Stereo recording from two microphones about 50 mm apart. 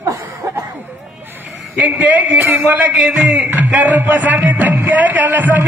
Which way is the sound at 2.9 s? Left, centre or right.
Centre.